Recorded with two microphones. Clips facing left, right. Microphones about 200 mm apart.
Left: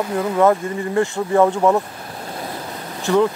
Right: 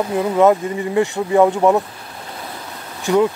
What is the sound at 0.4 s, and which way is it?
Speech, 15° right (ahead or behind).